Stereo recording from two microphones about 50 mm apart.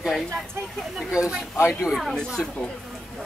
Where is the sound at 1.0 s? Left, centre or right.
Centre.